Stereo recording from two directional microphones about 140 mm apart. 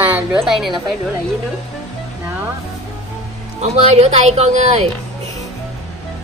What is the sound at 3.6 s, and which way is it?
Speech, 50° right (ahead or behind).